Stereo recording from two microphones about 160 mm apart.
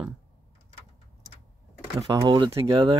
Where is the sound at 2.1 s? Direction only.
25° right (ahead or behind).